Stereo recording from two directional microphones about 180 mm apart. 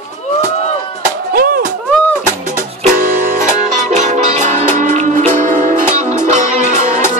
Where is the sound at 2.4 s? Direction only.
45° right (ahead or behind).